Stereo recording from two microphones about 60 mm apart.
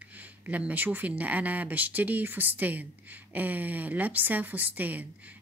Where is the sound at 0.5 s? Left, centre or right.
Right.